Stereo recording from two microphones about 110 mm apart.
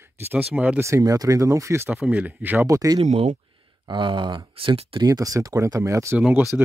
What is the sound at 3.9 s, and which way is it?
Speech, 45° right (ahead or behind).